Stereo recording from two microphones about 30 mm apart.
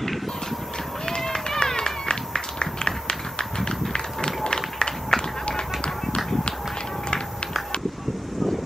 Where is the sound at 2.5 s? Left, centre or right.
Left.